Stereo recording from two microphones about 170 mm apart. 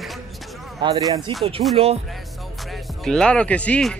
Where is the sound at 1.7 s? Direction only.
35° right (ahead or behind).